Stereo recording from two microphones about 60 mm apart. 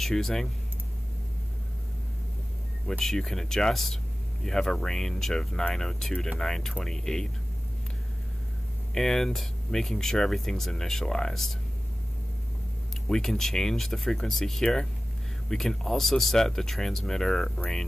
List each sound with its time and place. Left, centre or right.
0.0 s speech: centre
2.9 s speech: centre
8.9 s speech: centre
13.1 s speech: centre